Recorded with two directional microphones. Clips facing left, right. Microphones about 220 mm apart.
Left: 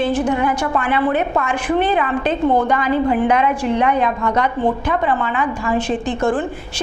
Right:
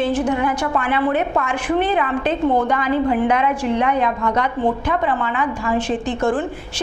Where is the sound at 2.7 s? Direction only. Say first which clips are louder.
Left 1 dB; 20° left (ahead or behind).